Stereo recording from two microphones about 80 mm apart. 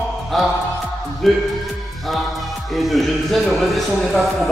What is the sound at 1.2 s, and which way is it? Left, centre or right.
Speech, centre.